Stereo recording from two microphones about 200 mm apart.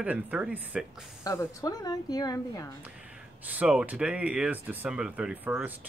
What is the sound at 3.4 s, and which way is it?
Speech, 5° right (ahead or behind).